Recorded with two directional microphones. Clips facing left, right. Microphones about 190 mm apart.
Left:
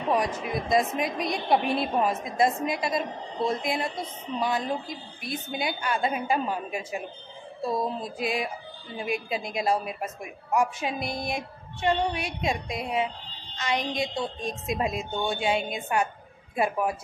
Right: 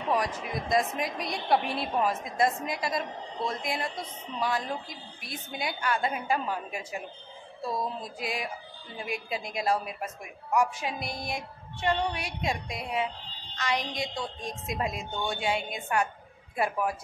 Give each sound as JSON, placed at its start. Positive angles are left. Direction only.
{"t": 0.1, "sound": "a woman's voice", "side_deg": 25}